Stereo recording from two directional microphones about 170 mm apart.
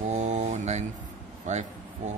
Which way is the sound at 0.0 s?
45° right (ahead or behind).